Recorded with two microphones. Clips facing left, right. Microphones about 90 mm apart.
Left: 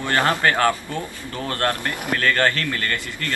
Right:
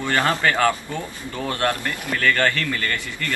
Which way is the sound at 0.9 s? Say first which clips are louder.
Even; 15° right (ahead or behind).